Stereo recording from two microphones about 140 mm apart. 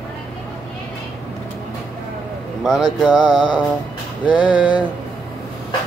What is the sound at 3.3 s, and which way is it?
Music, 30° left (ahead or behind).